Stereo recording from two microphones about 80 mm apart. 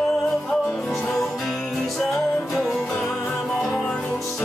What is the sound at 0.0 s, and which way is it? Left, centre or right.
Music, centre.